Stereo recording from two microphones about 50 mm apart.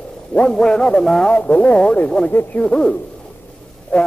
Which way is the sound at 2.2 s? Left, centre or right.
Centre.